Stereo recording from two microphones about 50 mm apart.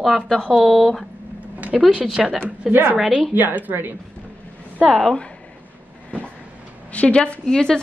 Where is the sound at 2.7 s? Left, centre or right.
Right.